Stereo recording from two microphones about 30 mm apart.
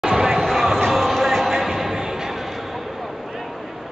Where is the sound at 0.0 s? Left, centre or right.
Centre.